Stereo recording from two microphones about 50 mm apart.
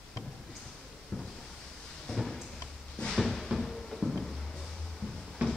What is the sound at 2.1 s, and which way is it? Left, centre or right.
Drawer open or close, centre.